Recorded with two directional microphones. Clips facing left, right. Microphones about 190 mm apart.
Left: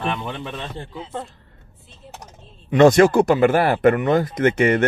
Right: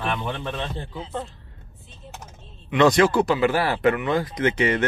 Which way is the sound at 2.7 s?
50° left (ahead or behind).